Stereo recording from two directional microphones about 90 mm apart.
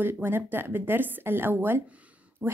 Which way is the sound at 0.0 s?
25° right (ahead or behind).